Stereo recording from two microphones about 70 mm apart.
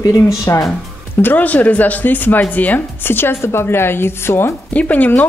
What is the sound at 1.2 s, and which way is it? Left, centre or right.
Speech, left.